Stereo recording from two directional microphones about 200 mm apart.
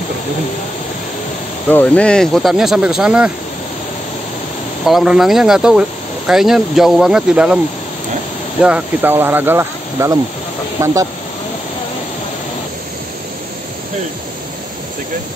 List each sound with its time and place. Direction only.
1.7 s speech: 10° left (ahead or behind)
4.8 s speech: centre (ahead or behind)